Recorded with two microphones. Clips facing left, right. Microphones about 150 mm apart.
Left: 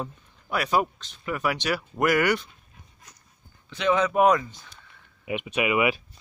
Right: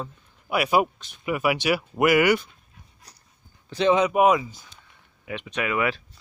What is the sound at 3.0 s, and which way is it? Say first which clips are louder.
Dog: right 1 dB; 35° right (ahead or behind).